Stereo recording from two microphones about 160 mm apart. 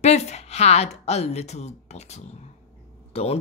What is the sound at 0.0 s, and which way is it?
Speech, 45° left (ahead or behind).